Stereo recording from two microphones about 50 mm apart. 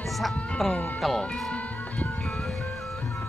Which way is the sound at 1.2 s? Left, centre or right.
Left.